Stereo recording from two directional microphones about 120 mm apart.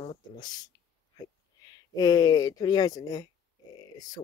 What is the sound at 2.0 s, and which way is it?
Speech, 30° left (ahead or behind).